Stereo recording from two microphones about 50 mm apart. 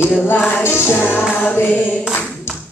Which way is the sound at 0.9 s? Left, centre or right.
Left.